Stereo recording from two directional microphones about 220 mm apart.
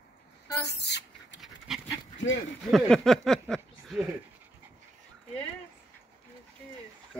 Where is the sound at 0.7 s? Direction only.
50° left (ahead or behind).